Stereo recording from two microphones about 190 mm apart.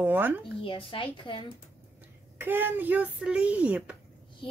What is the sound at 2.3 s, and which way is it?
A woman's voice, 10° right (ahead or behind).